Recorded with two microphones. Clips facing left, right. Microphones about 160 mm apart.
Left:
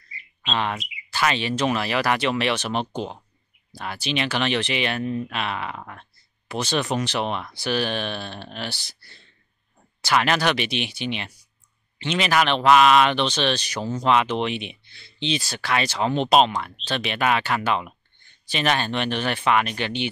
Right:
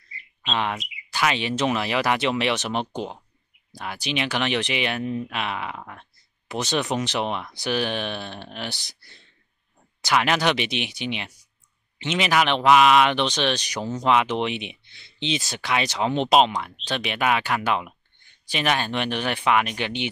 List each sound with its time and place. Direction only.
0.5 s speech: 10° right (ahead or behind)
5.8 s a sound: 5° right (ahead or behind)
6.5 s speech: 20° right (ahead or behind)